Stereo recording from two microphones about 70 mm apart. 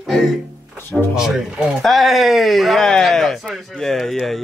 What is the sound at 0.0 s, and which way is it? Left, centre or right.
Music, centre.